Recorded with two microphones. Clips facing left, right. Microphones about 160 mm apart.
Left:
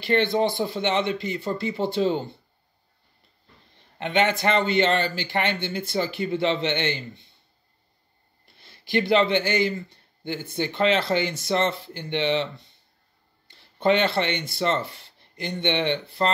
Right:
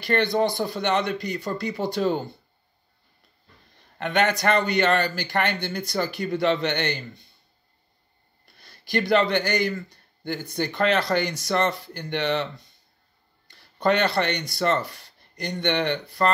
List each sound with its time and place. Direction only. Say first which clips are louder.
0.0 s speech: even; 20° left (ahead or behind)
2.0 s speech: even; 50° right (ahead or behind)
3.7 s a man's voice: even; 20° left (ahead or behind)
8.5 s speech: left 1 dB; 20° left (ahead or behind)
13.5 s speech: left 1 dB; 20° left (ahead or behind)